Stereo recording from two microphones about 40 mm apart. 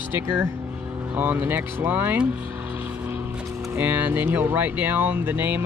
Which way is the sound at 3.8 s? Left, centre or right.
Right.